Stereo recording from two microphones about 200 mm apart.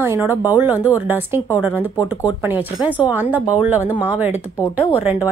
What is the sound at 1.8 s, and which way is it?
Speech, 15° left (ahead or behind).